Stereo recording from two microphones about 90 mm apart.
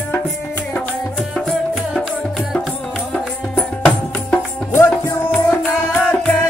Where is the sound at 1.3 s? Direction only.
Centre (ahead or behind).